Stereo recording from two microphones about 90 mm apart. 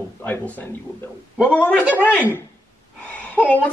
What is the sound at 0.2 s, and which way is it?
A man's voice, 20° left (ahead or behind).